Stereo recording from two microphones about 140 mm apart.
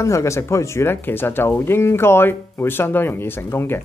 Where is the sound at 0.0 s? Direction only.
20° left (ahead or behind).